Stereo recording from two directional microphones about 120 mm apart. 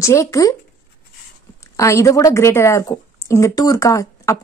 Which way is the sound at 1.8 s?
25° left (ahead or behind).